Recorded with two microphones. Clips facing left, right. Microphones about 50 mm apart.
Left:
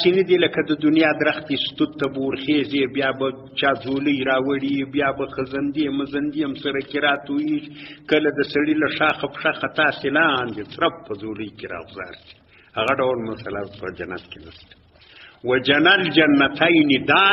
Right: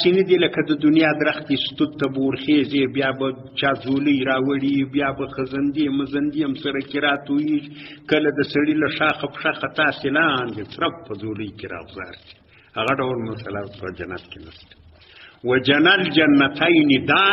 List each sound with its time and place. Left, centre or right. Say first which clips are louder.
0.4 s a man's voice: right 1 dB; centre
1.0 s a man's voice: even; left
1.3 s a man's voice: right 2 dB; centre
15.4 s a man's voice: even; centre